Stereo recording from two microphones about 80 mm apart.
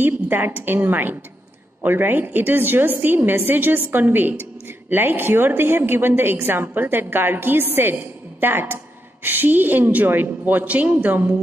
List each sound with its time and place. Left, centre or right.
0.0 s a woman's voice: right